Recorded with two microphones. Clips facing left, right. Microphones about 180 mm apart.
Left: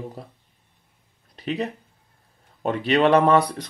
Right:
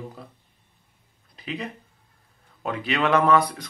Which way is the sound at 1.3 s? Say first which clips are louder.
Left 6 dB; 35° left (ahead or behind).